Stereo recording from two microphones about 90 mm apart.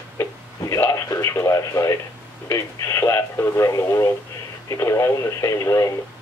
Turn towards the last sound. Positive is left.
turn(degrees=35)  # may be behind; listen again after turning